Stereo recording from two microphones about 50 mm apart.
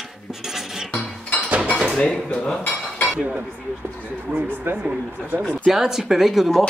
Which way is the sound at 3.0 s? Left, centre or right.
Centre.